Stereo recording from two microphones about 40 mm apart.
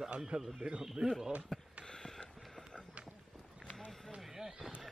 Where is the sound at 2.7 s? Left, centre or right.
Left.